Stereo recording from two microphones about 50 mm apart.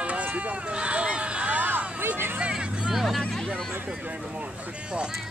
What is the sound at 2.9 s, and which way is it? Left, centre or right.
Hubbub, centre.